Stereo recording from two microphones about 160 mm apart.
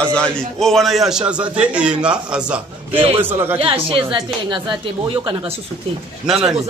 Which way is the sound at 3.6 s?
35° right (ahead or behind).